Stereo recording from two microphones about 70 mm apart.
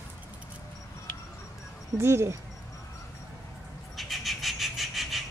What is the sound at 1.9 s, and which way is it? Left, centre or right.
Speech, right.